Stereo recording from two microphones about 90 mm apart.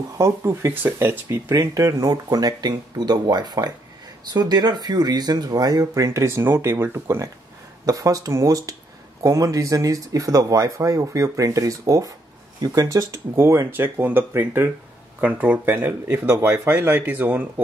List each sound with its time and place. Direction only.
0.2 s speech: 30° right (ahead or behind)
7.8 s speech: 40° right (ahead or behind); by 17.5 s 20° right (ahead or behind)